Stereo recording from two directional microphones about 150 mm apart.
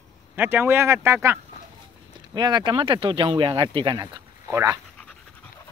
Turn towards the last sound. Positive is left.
turn(degrees=-20)  # may be behind; listen again after turning